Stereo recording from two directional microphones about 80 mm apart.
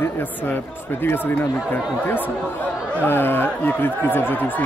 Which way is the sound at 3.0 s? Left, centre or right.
Left.